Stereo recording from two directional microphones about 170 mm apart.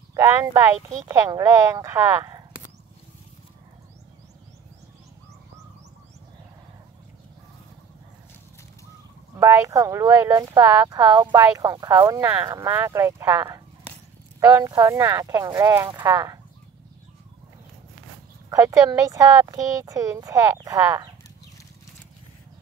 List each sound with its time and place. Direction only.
0.1 s speech: 15° right (ahead or behind)
9.3 s speech: 15° right (ahead or behind)
18.5 s speech: 20° right (ahead or behind)